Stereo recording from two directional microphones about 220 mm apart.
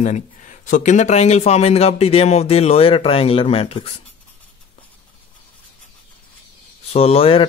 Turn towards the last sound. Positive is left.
turn(degrees=25)  # may be behind; listen again after turning